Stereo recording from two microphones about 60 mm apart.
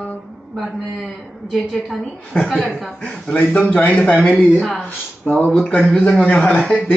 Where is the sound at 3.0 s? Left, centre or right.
Left.